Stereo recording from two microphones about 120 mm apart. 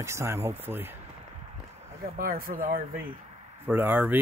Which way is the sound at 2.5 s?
90° right.